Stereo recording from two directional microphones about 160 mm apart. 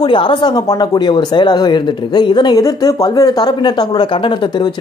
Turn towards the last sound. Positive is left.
turn(degrees=25)  # may be behind; listen again after turning